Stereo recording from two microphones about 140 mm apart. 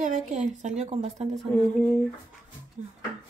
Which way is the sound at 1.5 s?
10° left (ahead or behind).